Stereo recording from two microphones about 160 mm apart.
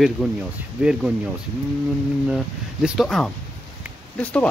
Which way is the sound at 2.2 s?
5° right (ahead or behind).